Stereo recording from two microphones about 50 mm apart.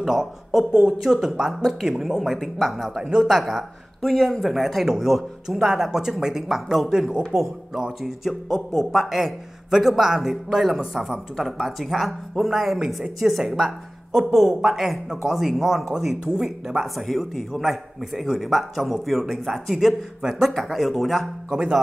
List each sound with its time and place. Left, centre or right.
0.0 s a man's voice: centre
3.0 s a man's voice: centre
8.0 s a man's voice: centre
21.5 s speech: centre